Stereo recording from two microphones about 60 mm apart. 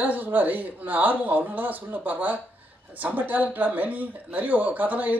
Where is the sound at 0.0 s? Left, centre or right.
Right.